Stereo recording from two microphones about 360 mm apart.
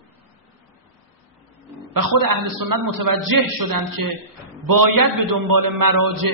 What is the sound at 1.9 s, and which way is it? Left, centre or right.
Speech, right.